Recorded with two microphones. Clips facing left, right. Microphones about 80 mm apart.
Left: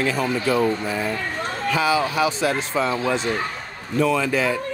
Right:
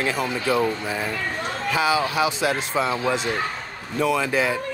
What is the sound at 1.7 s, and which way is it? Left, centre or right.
Speech, centre.